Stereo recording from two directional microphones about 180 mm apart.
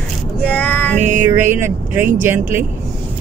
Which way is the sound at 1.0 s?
45° right (ahead or behind).